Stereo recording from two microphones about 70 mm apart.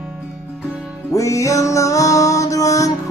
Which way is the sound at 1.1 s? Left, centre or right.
Left.